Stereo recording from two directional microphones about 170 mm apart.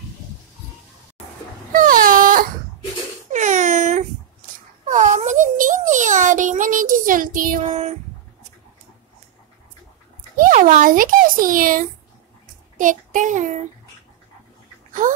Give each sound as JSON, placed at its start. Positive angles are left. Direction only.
{"t": 1.7, "sound": "wail", "side_deg": -55}
{"t": 3.3, "sound": "crying", "side_deg": -45}
{"t": 4.8, "sound": "a sound", "side_deg": -45}
{"t": 7.6, "sound": "a sound", "side_deg": -40}
{"t": 10.3, "sound": "a child's voice", "side_deg": -50}
{"t": 12.7, "sound": "child singing", "side_deg": -50}